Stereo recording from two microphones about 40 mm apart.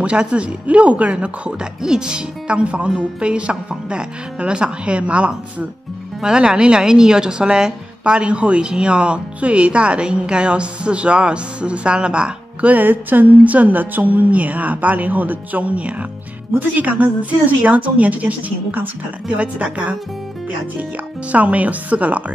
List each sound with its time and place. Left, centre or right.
0.0 s a woman's voice: right
1.8 s a woman's voice: centre
12.6 s a woman's voice: right
19.2 s speech: right
21.3 s speech: right